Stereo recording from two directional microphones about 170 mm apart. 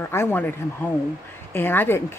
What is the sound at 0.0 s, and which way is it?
Speech, 15° left (ahead or behind).